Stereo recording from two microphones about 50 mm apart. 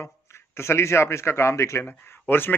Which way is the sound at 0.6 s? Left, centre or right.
Left.